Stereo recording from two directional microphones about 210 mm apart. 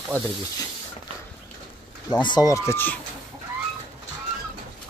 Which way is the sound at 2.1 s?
20° left (ahead or behind).